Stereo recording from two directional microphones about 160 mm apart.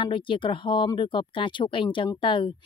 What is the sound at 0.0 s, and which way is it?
Speech, 30° left (ahead or behind).